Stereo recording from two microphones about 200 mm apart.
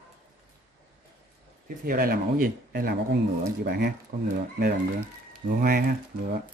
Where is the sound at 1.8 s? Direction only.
45° right (ahead or behind).